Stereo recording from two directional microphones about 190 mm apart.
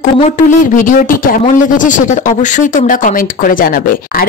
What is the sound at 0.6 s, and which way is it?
Speech, 45° left (ahead or behind).